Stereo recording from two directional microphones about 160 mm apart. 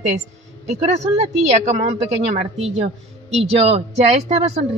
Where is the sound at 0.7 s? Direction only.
45° right (ahead or behind).